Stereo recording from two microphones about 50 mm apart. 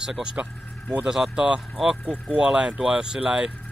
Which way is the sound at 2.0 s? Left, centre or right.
Left.